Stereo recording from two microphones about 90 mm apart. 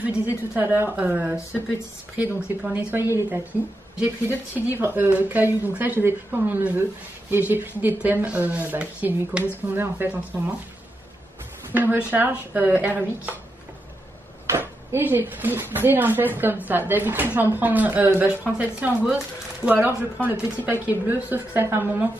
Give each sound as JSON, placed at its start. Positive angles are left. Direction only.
{"t": 0.6, "sound": "a woman's voice", "side_deg": -25}
{"t": 4.6, "sound": "a woman's voice", "side_deg": -25}
{"t": 11.7, "sound": "a woman's voice", "side_deg": -20}
{"t": 14.6, "sound": "a woman's voice", "side_deg": -25}